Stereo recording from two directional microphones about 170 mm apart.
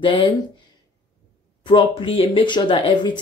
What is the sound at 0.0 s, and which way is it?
Speech, 30° left (ahead or behind).